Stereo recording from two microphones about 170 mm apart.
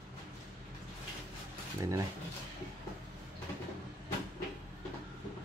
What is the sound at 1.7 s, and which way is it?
Speech, 20° right (ahead or behind).